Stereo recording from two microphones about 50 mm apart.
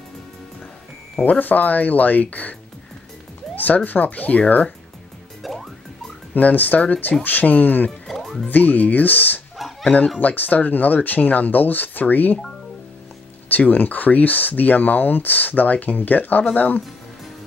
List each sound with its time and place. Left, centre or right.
1.4 s speech: left
3.5 s speech: left
5.4 s music: centre
6.3 s speech: left
8.1 s music: centre
8.5 s speech: left
9.6 s bow-wow: centre
10.2 s speech: left
13.5 s speech: left